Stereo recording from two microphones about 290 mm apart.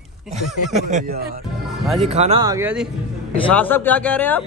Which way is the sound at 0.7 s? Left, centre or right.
Right.